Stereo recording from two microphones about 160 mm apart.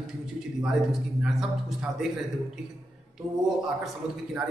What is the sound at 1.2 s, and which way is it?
Speech, 5° right (ahead or behind).